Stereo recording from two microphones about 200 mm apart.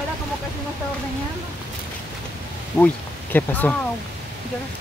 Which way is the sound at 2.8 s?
15° left (ahead or behind).